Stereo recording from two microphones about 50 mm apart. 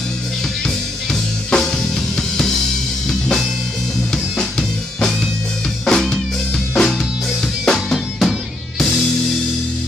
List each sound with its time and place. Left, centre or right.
1.5 s drum kit: centre
3.1 s music: centre